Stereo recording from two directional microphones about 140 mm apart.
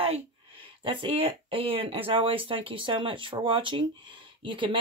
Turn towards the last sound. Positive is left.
turn(degrees=-35)  # may be behind; listen again after turning